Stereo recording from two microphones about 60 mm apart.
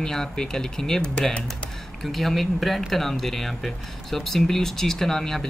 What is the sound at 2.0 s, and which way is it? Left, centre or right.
Speech, centre.